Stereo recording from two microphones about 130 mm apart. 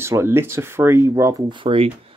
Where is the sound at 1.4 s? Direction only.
40° right (ahead or behind).